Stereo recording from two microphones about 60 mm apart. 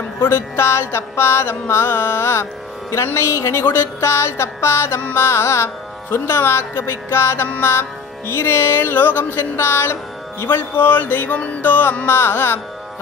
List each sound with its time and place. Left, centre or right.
0.2 s speech: left
8.3 s music: left
12.1 s music: left